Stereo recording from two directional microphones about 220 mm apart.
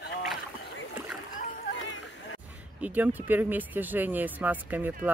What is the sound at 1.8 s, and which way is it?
Rowboat, 60° left (ahead or behind).